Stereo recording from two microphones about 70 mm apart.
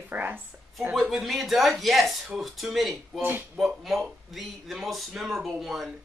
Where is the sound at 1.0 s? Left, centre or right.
Centre.